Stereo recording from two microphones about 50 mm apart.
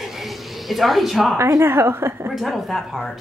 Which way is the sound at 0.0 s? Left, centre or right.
Centre.